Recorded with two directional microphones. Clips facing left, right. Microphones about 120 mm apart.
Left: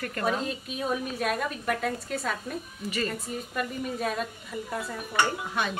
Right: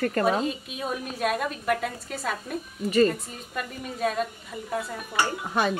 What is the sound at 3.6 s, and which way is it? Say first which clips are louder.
A woman's voice: right 2 dB; centre (ahead or behind).